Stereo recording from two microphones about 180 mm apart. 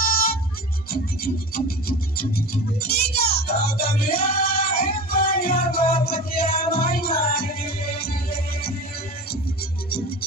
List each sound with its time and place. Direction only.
0.8 s music: 55° left (ahead or behind)